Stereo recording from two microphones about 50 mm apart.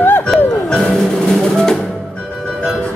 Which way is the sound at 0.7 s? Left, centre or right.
Centre.